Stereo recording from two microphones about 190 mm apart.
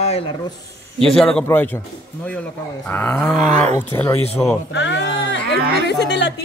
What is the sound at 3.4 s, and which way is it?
Speech, 40° right (ahead or behind).